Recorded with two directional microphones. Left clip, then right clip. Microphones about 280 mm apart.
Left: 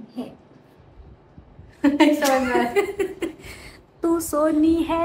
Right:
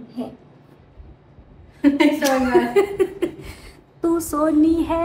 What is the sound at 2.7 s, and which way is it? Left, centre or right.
A woman's voice, centre.